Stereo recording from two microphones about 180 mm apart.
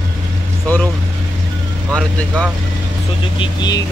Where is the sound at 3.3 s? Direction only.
25° left (ahead or behind).